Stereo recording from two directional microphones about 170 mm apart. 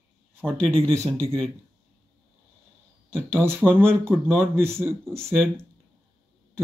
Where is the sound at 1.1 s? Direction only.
35° right (ahead or behind).